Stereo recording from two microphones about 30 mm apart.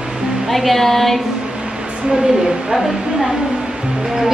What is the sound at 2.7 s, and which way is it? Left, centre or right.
Speech, centre.